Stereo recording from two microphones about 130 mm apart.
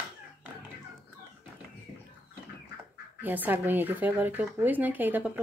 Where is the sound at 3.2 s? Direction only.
15° right (ahead or behind).